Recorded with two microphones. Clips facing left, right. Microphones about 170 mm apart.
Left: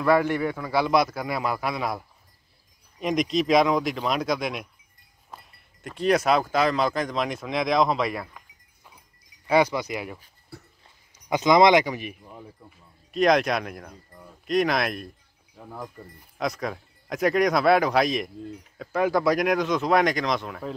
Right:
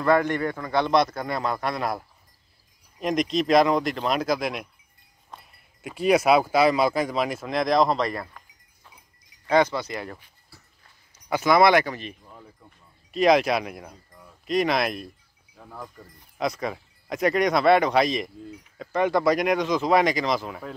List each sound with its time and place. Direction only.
0.0 s speech: 5° left (ahead or behind)
10.5 s dog: 60° left (ahead or behind)
11.2 s speech: 15° left (ahead or behind)
12.7 s speech: centre (ahead or behind)